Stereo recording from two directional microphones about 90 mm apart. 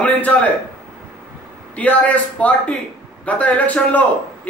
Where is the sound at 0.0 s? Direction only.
15° left (ahead or behind).